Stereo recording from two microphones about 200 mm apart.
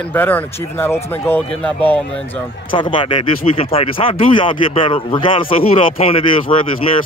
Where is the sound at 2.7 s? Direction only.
25° left (ahead or behind).